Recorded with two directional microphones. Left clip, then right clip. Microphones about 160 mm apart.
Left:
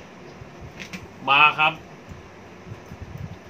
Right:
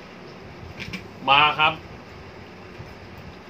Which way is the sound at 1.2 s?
25° left (ahead or behind).